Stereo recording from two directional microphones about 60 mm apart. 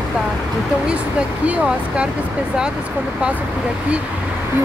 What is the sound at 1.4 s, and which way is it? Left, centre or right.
Speech, right.